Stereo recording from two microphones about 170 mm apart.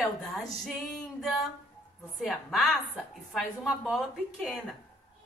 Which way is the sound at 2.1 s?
Centre (ahead or behind).